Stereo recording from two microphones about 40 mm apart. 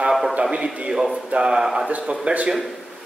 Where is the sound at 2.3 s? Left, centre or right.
Right.